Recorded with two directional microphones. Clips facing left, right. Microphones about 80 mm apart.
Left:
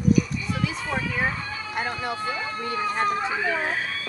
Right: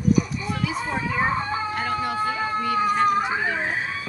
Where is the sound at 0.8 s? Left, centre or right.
Right.